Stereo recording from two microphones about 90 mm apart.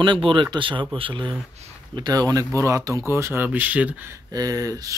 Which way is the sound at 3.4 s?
15° right (ahead or behind).